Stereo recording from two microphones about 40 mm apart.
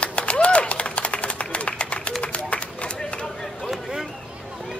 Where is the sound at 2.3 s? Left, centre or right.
Left.